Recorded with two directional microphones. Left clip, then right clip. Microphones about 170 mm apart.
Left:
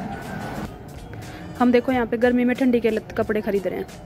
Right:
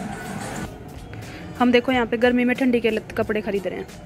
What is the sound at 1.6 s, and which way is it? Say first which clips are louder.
Speech: right 1 dB; centre (ahead or behind).